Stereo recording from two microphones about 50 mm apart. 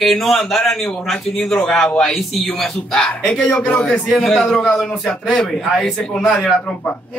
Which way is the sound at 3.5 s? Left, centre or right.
Left.